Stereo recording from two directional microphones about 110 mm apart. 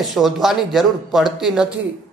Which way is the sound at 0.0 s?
Centre (ahead or behind).